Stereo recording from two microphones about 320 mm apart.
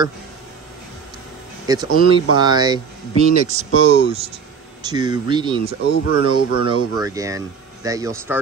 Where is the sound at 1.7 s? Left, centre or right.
Centre.